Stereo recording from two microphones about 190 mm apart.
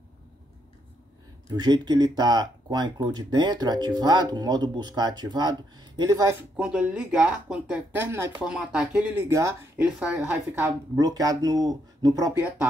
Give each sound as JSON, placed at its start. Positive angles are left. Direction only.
{"t": 1.5, "sound": "speech", "side_deg": -20}
{"t": 6.5, "sound": "speech", "side_deg": -5}
{"t": 9.8, "sound": "speech", "side_deg": -5}
{"t": 11.0, "sound": "speech", "side_deg": -20}